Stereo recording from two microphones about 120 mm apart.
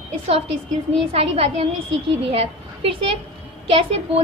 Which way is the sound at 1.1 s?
55° right (ahead or behind).